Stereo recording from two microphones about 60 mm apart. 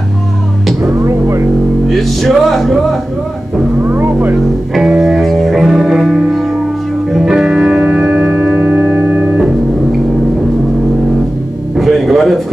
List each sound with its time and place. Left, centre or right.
1.0 s speech: right
1.9 s music: centre
3.9 s speech: right
4.7 s music: centre
11.7 s music: centre